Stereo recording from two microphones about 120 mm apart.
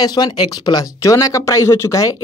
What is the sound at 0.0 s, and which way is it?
Speech, 35° left (ahead or behind).